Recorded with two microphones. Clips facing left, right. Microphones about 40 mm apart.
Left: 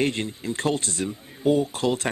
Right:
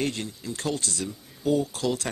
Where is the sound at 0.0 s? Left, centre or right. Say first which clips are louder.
Left 5 dB; left.